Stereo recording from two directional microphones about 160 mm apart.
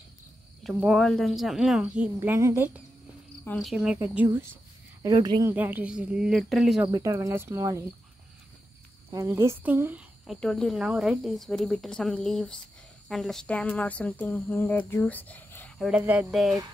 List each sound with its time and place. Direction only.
0.7 s speech: centre (ahead or behind)
2.1 s speech: 15° right (ahead or behind)
3.5 s speech: centre (ahead or behind)
5.0 s speech: 25° right (ahead or behind)
5.5 s speech: 10° right (ahead or behind)
6.9 s speech: 20° right (ahead or behind)
9.1 s speech: 20° right (ahead or behind)
10.2 s speech: centre (ahead or behind)
16.0 s speech: 10° right (ahead or behind)